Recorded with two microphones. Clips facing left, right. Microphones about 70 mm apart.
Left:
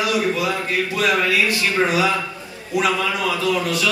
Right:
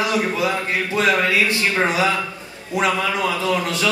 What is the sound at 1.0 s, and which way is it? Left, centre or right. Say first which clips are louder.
Speech: right 1 dB; right.